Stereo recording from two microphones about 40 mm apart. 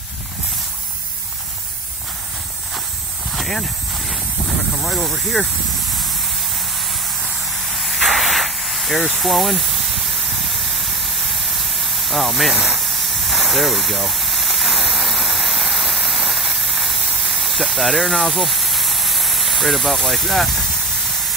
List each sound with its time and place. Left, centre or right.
3.3 s a sound: centre
4.8 s speech: centre
5.9 s spray: centre